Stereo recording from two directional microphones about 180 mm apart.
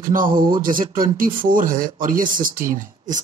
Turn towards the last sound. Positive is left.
turn(degrees=-45)  # may be behind; listen again after turning